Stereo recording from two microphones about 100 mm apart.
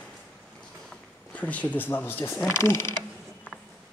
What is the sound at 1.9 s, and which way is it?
Speech, 20° left (ahead or behind).